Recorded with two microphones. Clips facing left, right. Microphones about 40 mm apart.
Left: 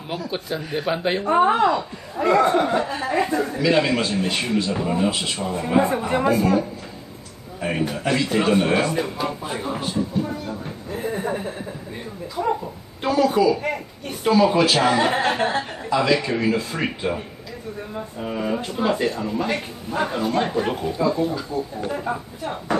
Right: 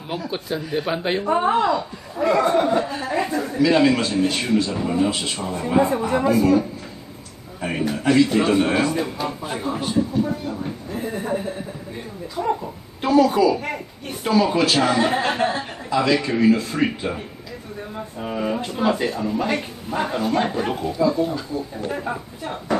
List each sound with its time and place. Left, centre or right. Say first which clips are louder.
0.3 s a man's voice: right 2 dB; centre
1.3 s speech: left 2 dB; centre
2.5 s speech: right 1 dB; centre
6.0 s speech: right 1 dB; left
7.6 s a man's voice: right 2 dB; centre
11.1 s a man's voice: right 1 dB; centre
18.2 s a man's voice: right 1 dB; centre